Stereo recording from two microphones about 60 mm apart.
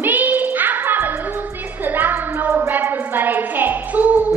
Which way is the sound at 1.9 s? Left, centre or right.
Right.